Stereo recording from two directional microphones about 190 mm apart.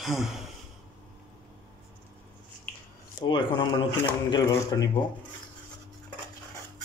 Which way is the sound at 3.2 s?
25° left (ahead or behind).